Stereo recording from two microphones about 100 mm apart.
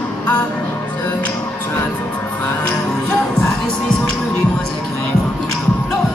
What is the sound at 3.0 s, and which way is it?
Music, 25° left (ahead or behind).